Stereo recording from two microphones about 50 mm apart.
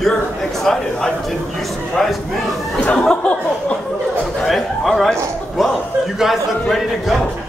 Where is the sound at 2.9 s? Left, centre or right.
Centre.